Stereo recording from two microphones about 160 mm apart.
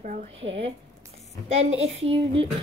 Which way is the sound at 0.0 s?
50° right (ahead or behind).